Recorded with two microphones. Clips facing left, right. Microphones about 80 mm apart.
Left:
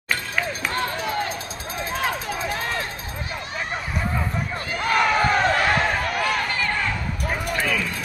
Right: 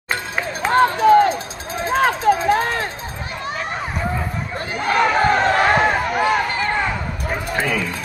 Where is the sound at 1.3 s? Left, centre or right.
Right.